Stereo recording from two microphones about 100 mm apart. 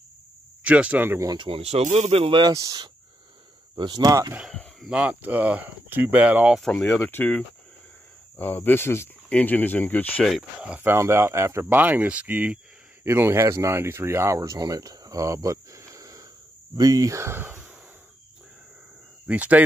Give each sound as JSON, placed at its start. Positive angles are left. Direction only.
{"t": 0.7, "sound": "speech", "side_deg": -10}
{"t": 1.4, "sound": "speech", "side_deg": -80}
{"t": 2.5, "sound": "speech", "side_deg": -35}
{"t": 3.7, "sound": "speech", "side_deg": -45}
{"t": 4.7, "sound": "speech", "side_deg": -5}
{"t": 5.0, "sound": "speech", "side_deg": -15}
{"t": 7.0, "sound": "speech", "side_deg": 20}
{"t": 10.8, "sound": "speech", "side_deg": -25}
{"t": 13.0, "sound": "speech", "side_deg": -25}
{"t": 19.2, "sound": "speech", "side_deg": -15}